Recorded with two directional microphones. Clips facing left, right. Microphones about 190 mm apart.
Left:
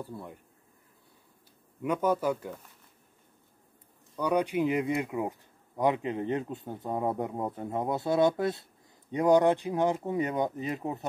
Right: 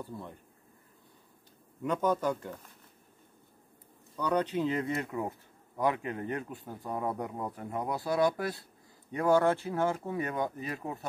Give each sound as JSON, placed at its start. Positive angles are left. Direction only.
{"t": 0.0, "sound": "speech", "side_deg": 10}
{"t": 1.8, "sound": "speech", "side_deg": 10}
{"t": 4.2, "sound": "speech", "side_deg": 10}